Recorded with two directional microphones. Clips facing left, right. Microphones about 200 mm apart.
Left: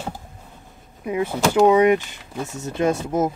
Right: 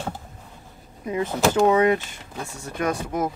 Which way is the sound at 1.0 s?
15° left (ahead or behind).